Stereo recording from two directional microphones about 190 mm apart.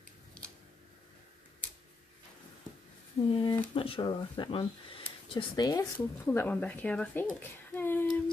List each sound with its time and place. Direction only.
3.3 s speech: 25° left (ahead or behind); by 8.1 s 10° left (ahead or behind)